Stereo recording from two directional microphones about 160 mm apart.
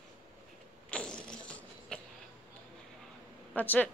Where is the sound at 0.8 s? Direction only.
5° left (ahead or behind).